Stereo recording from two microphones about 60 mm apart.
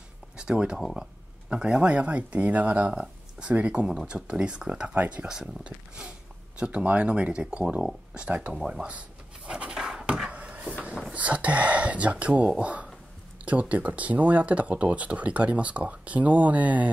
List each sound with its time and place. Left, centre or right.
0.4 s speech: centre
2.9 s a sound: centre
3.4 s speech: right
4.9 s speech: right
5.2 s speech: centre
9.5 s a sound: centre
11.1 s speech: right